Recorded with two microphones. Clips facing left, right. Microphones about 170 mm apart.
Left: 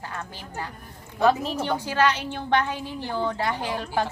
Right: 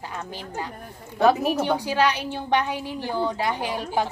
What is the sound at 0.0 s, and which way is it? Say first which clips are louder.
A woman's voice: right 2 dB; 15° right (ahead or behind).